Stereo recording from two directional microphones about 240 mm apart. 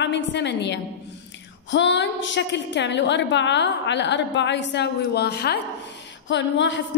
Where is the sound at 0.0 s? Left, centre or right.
Left.